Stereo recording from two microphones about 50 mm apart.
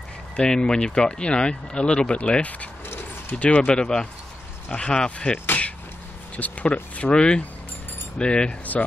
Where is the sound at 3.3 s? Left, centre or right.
Left.